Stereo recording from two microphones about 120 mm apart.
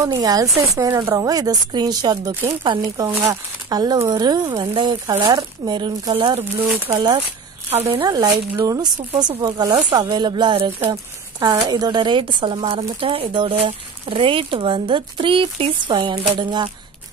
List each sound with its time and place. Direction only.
0.0 s speech: 30° right (ahead or behind)
7.7 s speech: 55° right (ahead or behind)
8.5 s speech: 30° right (ahead or behind)